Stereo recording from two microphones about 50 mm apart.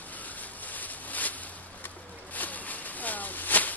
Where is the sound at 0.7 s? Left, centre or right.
Left.